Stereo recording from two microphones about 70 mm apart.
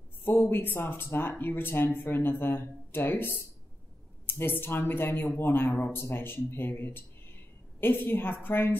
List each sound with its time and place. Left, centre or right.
0.2 s speech: left